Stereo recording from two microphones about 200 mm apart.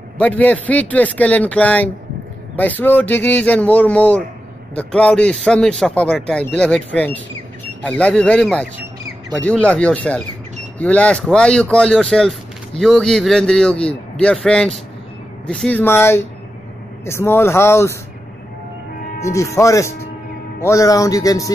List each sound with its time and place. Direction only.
0.2 s speech: 5° left (ahead or behind)
19.2 s speech: 15° left (ahead or behind)